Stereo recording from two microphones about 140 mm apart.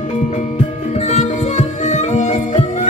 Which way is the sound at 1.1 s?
55° left (ahead or behind).